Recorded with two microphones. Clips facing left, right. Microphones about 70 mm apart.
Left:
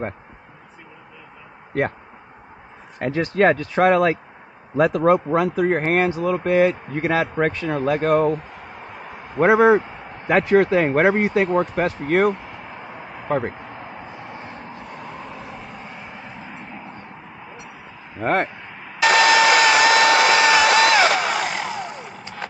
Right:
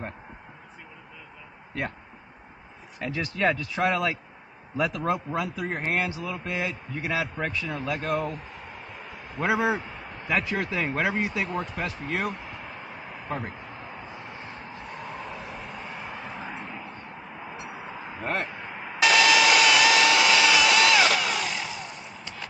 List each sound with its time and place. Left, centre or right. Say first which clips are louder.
3.0 s speech: left 9 dB; left
9.4 s speech: left 11 dB; left
15.8 s vehicle: even; centre
18.2 s speech: left 10 dB; left
18.6 s vehicle: right 1 dB; centre
18.9 s a sound: left 5 dB; left